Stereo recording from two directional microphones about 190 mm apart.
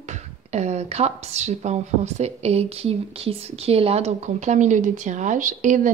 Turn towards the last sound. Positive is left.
turn(degrees=-40)  # may be behind; listen again after turning